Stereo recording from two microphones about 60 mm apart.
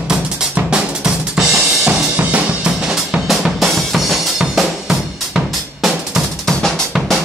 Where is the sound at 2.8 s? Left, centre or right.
Centre.